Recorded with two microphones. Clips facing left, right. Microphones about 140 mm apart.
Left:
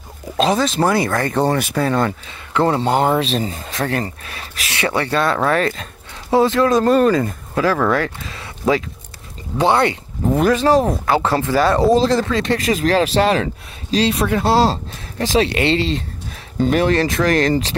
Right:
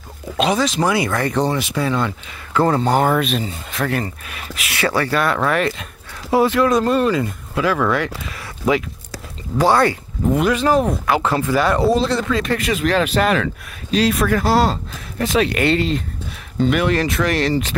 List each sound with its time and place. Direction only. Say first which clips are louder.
0.4 s speech: left 1 dB; 30° left (ahead or behind)
0.8 s speech: left 1 dB; 40° left (ahead or behind)
2.5 s speech: even; 20° left (ahead or behind)
10.4 s speech: left 3 dB; 35° left (ahead or behind)
16.5 s speech: left 2 dB; 40° left (ahead or behind)